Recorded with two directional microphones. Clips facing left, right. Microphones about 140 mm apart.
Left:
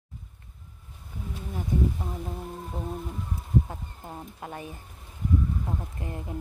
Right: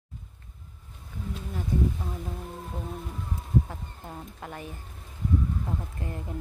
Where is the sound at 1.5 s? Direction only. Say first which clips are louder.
Left 1 dB; 15° left (ahead or behind).